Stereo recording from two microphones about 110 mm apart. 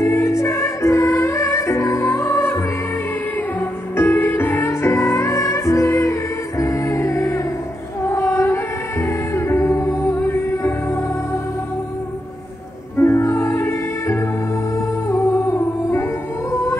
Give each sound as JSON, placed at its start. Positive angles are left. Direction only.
{"t": 0.0, "sound": "music", "side_deg": 25}
{"t": 3.9, "sound": "music", "side_deg": 20}
{"t": 8.1, "sound": "female singing", "side_deg": 25}
{"t": 9.0, "sound": "music", "side_deg": 25}
{"t": 13.0, "sound": "music", "side_deg": 20}